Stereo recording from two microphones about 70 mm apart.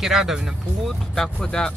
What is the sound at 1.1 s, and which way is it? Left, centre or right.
Speech, centre.